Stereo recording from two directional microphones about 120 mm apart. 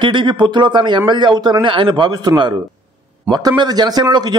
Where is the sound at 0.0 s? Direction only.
40° right (ahead or behind).